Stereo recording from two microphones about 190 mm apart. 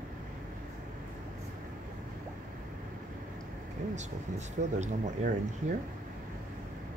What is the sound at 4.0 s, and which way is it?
Speech, 40° right (ahead or behind).